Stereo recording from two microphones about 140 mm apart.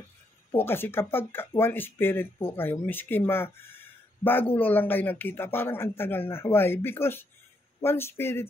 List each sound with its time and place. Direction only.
0.5 s speech: 15° left (ahead or behind)